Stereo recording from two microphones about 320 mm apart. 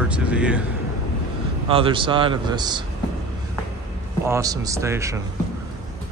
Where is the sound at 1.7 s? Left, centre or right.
Centre.